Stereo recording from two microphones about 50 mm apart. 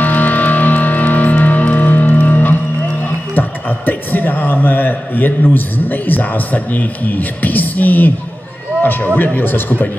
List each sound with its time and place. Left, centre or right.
0.0 s music: left
3.3 s a man's voice: left